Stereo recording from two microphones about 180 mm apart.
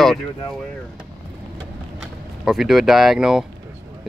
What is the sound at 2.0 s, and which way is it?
Speech, 5° right (ahead or behind).